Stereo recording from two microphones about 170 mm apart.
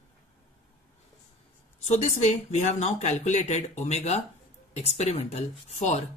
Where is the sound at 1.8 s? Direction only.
40° left (ahead or behind).